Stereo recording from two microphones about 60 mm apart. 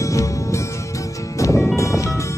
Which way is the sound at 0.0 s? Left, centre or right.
Left.